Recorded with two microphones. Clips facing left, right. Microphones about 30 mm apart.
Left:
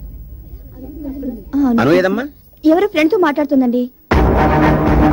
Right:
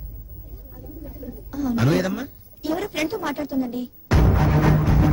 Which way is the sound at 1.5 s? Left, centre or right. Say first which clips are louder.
Left 10 dB; left.